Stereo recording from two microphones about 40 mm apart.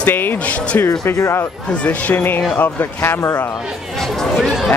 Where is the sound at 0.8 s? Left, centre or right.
Left.